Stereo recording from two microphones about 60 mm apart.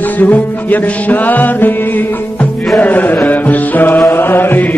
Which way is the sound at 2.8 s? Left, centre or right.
Left.